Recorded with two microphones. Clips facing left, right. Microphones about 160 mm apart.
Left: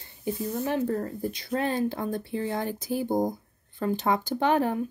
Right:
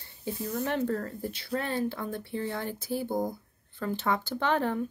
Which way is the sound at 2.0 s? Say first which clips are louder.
Left 5 dB; 40° left (ahead or behind).